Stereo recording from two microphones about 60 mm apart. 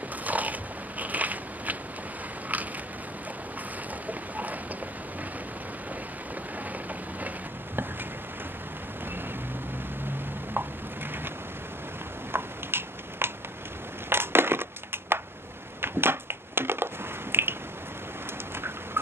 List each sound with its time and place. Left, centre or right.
0.2 s biting: right
4.1 s boat: right
12.3 s a sound: right
14.0 s crushing: right